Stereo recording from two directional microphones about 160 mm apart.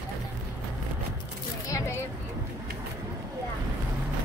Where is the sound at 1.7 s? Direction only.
20° left (ahead or behind).